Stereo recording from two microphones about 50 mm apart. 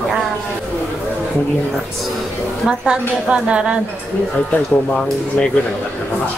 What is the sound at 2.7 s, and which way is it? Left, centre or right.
A woman's voice, centre.